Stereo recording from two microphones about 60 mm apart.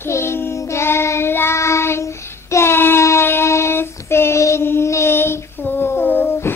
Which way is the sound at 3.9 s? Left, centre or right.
Left.